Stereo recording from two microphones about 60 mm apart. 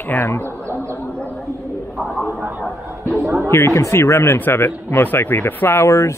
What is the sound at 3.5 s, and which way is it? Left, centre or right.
Speech, left.